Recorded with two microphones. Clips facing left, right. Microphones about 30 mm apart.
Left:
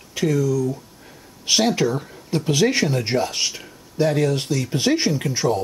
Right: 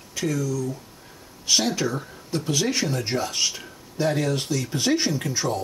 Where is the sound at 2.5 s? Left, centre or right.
Left.